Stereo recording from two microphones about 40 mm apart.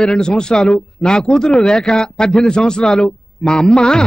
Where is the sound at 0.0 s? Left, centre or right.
Centre.